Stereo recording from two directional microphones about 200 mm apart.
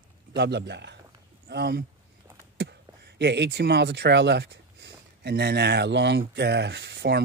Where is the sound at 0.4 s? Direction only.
55° right (ahead or behind).